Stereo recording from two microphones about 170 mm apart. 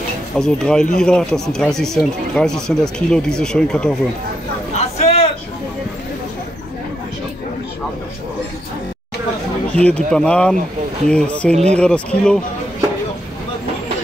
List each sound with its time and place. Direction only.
0.4 s speech: 5° left (ahead or behind)
4.7 s a sound: 40° left (ahead or behind)
9.8 s speech: 5° left (ahead or behind)